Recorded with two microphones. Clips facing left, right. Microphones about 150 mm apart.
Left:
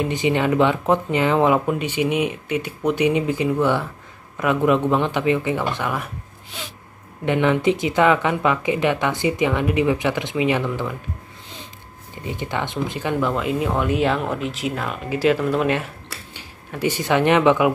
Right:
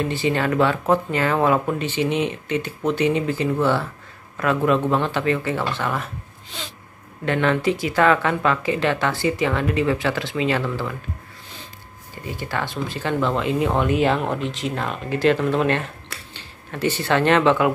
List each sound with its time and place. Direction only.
0.0 s speech: 15° left (ahead or behind)
12.2 s speech: 20° left (ahead or behind)